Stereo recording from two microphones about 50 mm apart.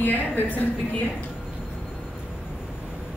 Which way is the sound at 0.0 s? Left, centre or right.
Left.